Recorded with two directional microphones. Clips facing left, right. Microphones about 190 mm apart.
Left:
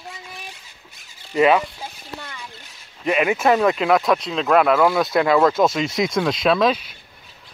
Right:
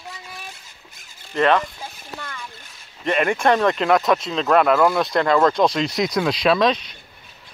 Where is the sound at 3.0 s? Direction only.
5° left (ahead or behind).